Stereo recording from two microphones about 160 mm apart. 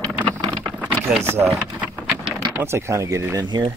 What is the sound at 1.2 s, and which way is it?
Speech, 15° right (ahead or behind).